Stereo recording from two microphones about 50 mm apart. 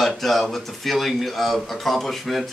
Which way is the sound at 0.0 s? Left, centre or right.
Centre.